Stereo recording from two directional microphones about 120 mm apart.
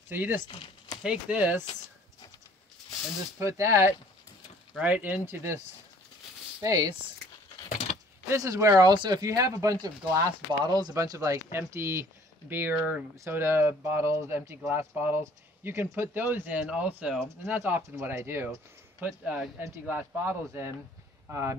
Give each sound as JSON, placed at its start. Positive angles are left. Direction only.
{"t": 0.1, "sound": "speech", "side_deg": -15}
{"t": 3.3, "sound": "speech", "side_deg": -25}
{"t": 4.7, "sound": "speech", "side_deg": -10}
{"t": 6.6, "sound": "speech", "side_deg": -30}
{"t": 8.3, "sound": "speech", "side_deg": -25}